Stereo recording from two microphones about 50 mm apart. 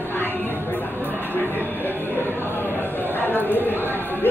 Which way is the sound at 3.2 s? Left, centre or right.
Left.